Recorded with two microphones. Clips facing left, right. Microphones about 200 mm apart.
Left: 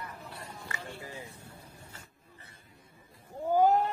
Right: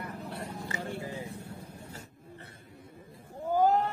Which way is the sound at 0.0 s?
60° right (ahead or behind).